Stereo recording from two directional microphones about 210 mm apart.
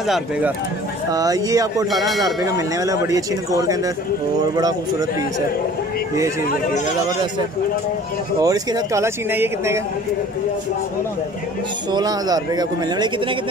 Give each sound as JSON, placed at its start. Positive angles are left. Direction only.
{"t": 0.0, "sound": "speech", "side_deg": 0}
{"t": 1.1, "sound": "speech", "side_deg": -15}
{"t": 8.4, "sound": "speech", "side_deg": -15}
{"t": 11.9, "sound": "speech", "side_deg": -20}